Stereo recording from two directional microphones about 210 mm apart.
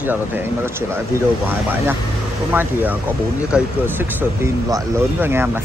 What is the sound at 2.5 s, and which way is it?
Speech, 10° right (ahead or behind).